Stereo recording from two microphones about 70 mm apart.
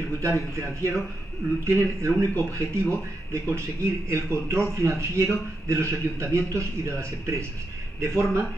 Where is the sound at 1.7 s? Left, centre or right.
Right.